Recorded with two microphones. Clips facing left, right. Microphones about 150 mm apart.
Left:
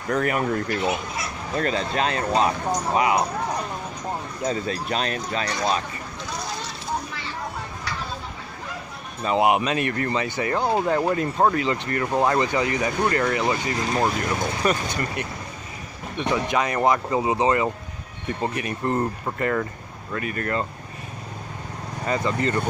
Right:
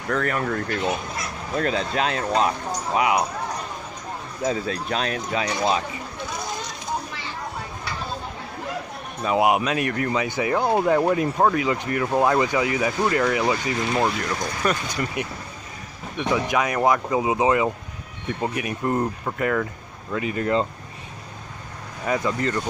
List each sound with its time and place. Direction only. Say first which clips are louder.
0.1 s speech: left 1 dB; 15° left (ahead or behind)
1.5 s speech: right 1 dB; centre (ahead or behind)
4.4 s speech: right 3 dB; 5° right (ahead or behind)
5.5 s speech: right 2 dB; 15° right (ahead or behind)
9.2 s speech: even; 5° right (ahead or behind)
15.2 s speech: right 2 dB; 15° right (ahead or behind)
16.2 s speech: right 1 dB; 5° right (ahead or behind)
20.2 s speech: right 4 dB; 15° right (ahead or behind)
22.0 s speech: even; 5° right (ahead or behind)